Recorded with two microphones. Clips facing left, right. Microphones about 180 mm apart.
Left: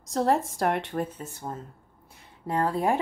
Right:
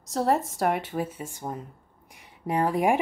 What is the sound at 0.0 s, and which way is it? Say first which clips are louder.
Speech: even; centre (ahead or behind).